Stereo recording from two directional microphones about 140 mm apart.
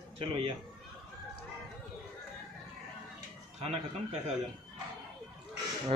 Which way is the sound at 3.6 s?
45° right (ahead or behind).